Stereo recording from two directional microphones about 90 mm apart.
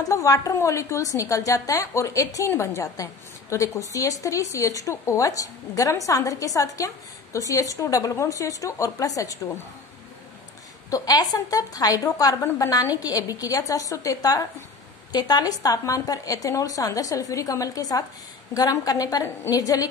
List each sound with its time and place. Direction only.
0.0 s a woman's voice: 40° left (ahead or behind)
10.9 s a woman's voice: 45° left (ahead or behind)